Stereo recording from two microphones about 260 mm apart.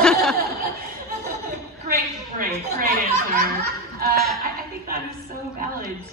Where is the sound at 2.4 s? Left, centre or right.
Right.